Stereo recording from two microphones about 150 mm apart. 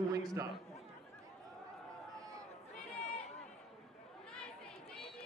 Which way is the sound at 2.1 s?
25° right (ahead or behind).